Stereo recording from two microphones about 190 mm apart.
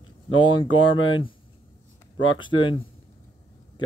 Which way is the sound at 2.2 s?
25° left (ahead or behind).